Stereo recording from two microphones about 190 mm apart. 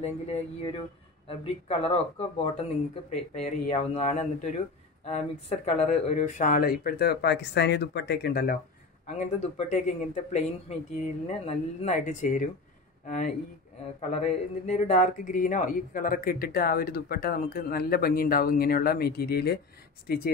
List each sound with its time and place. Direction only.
0.0 s speech: 35° left (ahead or behind)
5.7 s a man's voice: 35° left (ahead or behind); by 8.5 s 55° left (ahead or behind)
9.0 s a man's voice: 40° left (ahead or behind); by 20.2 s 55° left (ahead or behind)